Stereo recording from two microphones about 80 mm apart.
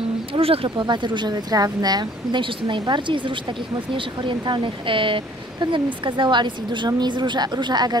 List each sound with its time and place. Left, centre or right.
0.3 s a sound: right
0.7 s speech: right
6.9 s speech: right